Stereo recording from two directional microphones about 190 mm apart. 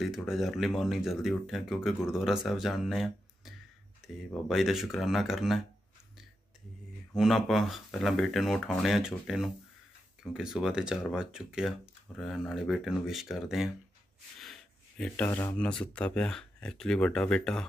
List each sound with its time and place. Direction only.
0.0 s speech: centre (ahead or behind)
4.0 s a sound: centre (ahead or behind)
4.5 s speech: centre (ahead or behind)
7.2 s speech: centre (ahead or behind)